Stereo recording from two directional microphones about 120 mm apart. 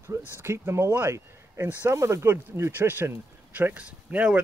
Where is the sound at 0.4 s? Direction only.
20° right (ahead or behind).